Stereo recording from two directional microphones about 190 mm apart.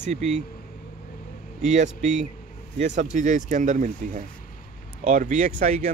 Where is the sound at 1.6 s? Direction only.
40° right (ahead or behind).